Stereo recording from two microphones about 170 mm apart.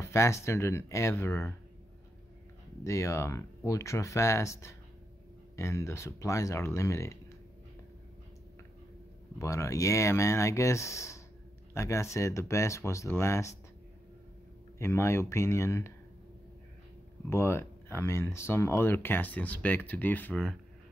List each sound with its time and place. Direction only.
0.0 s speech: 15° left (ahead or behind)
2.8 s speech: 15° left (ahead or behind)
9.4 s speech: 15° left (ahead or behind)
14.8 s speech: 15° left (ahead or behind)
17.3 s speech: 15° left (ahead or behind)